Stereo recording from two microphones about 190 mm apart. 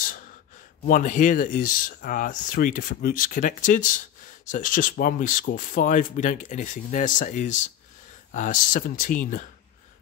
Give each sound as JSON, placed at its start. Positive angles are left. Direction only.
{"t": 0.8, "sound": "speech", "side_deg": 45}